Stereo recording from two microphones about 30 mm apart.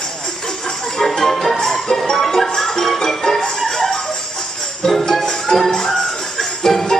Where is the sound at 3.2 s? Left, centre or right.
Left.